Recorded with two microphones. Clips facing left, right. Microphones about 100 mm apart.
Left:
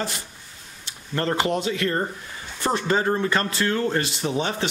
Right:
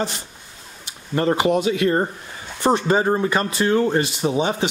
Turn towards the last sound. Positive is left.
turn(degrees=-15)  # may be behind; listen again after turning